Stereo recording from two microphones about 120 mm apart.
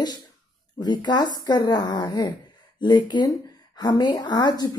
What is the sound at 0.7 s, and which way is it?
Speech, 35° left (ahead or behind).